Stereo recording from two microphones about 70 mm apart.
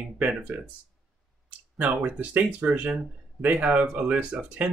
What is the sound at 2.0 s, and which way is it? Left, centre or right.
Speech, right.